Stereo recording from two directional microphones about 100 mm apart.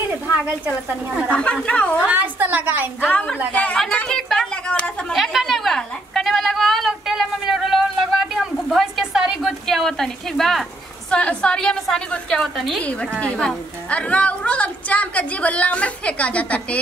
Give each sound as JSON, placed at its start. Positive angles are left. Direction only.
{"t": 1.3, "sound": "a woman's voice", "side_deg": 10}
{"t": 2.0, "sound": "a woman's voice", "side_deg": -15}
{"t": 3.0, "sound": "a woman's voice", "side_deg": 15}
{"t": 3.8, "sound": "a sound", "side_deg": 10}
{"t": 11.1, "sound": "a woman's voice", "side_deg": 10}